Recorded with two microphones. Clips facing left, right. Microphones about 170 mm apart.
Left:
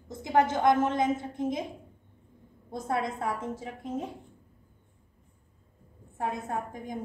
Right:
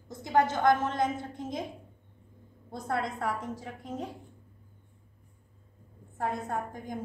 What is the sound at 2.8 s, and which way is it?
Speech, 20° left (ahead or behind).